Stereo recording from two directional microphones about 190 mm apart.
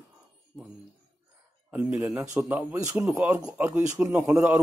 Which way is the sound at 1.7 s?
10° right (ahead or behind).